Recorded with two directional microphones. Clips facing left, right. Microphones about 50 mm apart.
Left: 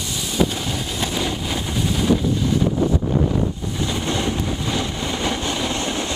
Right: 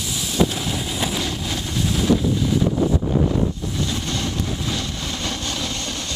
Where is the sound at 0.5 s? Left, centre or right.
Centre.